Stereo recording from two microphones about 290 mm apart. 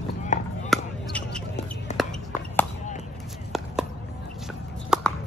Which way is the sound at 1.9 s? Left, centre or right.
Left.